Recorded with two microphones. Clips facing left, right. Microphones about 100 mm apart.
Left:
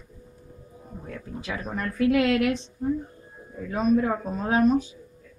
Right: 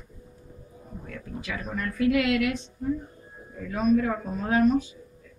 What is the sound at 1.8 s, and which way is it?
A woman's voice, 35° left (ahead or behind).